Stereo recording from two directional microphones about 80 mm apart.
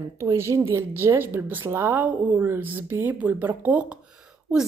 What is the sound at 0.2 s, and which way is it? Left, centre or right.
A woman's voice, right.